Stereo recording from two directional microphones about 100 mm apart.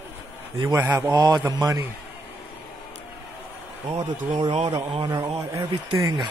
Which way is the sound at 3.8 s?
55° right (ahead or behind).